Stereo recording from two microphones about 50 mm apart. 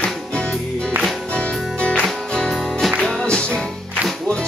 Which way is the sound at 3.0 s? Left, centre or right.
Centre.